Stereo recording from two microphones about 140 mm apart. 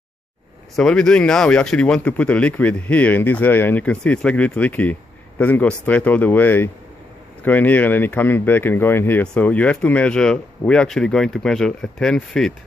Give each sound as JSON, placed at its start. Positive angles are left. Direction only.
{"t": 0.7, "sound": "speech", "side_deg": 5}